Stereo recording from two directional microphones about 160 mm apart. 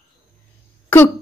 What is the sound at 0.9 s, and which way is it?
Cough, 10° left (ahead or behind).